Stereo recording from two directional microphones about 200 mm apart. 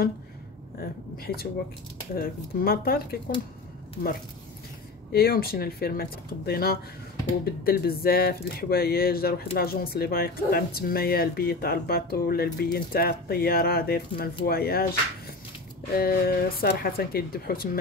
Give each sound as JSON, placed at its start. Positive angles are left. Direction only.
{"t": 0.7, "sound": "speech", "side_deg": 50}
{"t": 5.1, "sound": "speech", "side_deg": 50}
{"t": 15.9, "sound": "speech", "side_deg": 50}